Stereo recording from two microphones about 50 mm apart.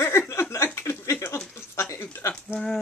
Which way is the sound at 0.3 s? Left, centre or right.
Left.